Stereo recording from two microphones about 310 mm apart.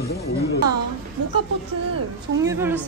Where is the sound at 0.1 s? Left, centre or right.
Left.